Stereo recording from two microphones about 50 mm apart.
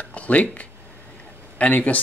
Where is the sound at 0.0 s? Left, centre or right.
Left.